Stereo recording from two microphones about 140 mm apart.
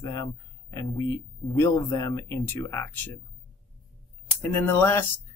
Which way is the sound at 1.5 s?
25° left (ahead or behind).